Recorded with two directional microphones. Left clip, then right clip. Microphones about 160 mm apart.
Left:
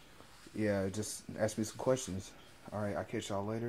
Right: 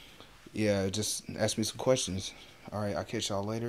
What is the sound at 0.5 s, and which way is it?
Speech, 30° right (ahead or behind).